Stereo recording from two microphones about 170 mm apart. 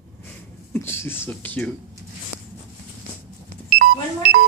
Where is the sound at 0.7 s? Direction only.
15° left (ahead or behind).